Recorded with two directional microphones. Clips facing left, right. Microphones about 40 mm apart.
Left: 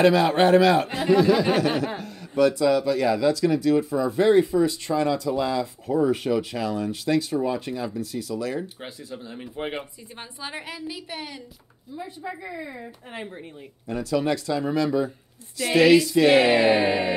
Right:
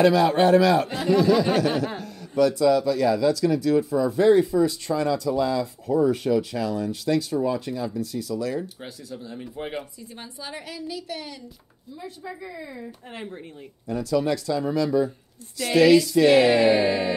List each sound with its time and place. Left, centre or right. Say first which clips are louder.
0.0 s speech: even; left
2.3 s speech: even; left
13.8 s speech: right 1 dB; left